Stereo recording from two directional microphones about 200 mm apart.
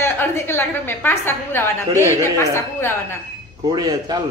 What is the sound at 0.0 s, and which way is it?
A woman's voice, 10° left (ahead or behind).